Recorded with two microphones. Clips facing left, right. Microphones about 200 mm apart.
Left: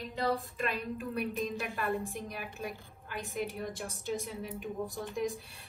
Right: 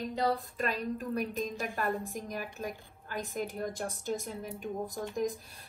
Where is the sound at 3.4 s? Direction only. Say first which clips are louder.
Left 1 dB; 45° right (ahead or behind).